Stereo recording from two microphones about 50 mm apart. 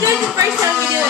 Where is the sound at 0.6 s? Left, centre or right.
Right.